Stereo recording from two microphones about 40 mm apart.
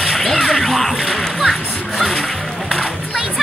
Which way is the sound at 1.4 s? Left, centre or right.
Centre.